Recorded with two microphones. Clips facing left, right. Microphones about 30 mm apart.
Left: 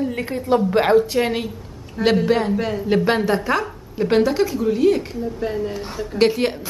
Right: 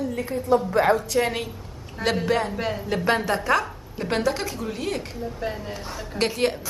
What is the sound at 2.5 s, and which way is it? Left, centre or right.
Speech, centre.